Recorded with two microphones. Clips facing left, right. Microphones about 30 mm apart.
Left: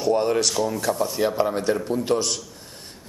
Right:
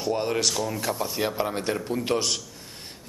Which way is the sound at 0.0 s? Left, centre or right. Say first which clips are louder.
Left 5 dB; centre.